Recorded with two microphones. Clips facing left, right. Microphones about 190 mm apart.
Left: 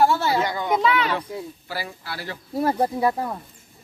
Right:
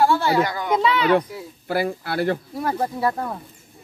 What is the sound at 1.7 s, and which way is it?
Speech, 55° right (ahead or behind).